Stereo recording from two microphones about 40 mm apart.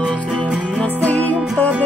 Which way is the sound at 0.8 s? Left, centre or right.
Left.